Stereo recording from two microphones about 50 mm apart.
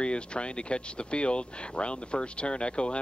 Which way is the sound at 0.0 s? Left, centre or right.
Left.